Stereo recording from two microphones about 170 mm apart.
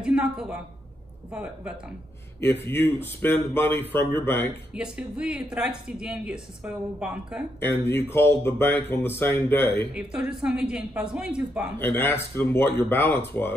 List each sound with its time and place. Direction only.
0.0 s a sound: 5° right (ahead or behind)
1.3 s speech: 5° right (ahead or behind)
2.4 s speech: 10° left (ahead or behind)
4.7 s speech: 5° right (ahead or behind)
7.6 s speech: 15° left (ahead or behind)
9.9 s speech: 5° right (ahead or behind)
11.8 s speech: 15° left (ahead or behind)